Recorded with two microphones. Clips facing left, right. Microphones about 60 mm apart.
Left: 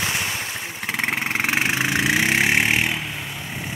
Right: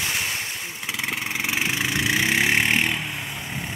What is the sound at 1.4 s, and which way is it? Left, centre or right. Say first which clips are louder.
Vehicle: left 3 dB; left.